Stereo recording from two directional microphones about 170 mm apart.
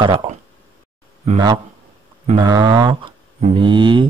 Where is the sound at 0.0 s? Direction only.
30° right (ahead or behind).